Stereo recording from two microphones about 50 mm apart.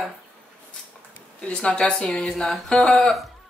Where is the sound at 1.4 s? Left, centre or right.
Centre.